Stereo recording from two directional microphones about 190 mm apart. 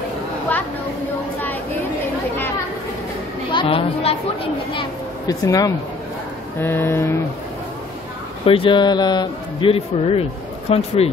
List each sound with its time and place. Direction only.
3.5 s speech: 30° left (ahead or behind)
6.6 s a sound: 10° left (ahead or behind)
8.5 s a man's voice: 25° left (ahead or behind)